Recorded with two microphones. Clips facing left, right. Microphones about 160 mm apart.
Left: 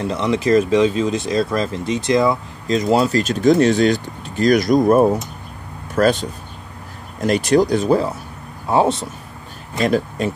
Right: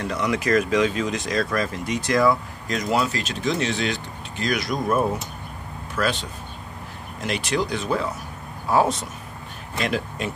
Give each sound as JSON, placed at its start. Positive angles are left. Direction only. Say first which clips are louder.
{"t": 0.0, "sound": "speech", "louder": "left 5 dB", "side_deg": 25}
{"t": 8.6, "sound": "speech", "louder": "left 4 dB", "side_deg": 25}
{"t": 9.8, "sound": "speech", "louder": "left 8 dB", "side_deg": 40}